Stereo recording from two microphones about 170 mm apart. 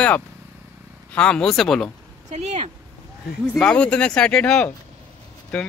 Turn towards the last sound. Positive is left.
turn(degrees=5)  # may be behind; listen again after turning